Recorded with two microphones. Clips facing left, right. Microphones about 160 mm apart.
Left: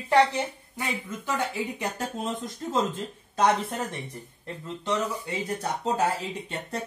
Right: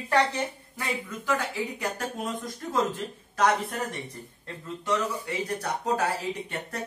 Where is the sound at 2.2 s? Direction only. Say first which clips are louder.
Left 1 dB; 25° left (ahead or behind).